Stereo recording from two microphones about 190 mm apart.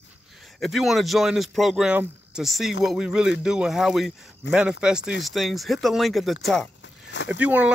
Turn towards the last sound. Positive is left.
turn(degrees=-5)  # may be behind; listen again after turning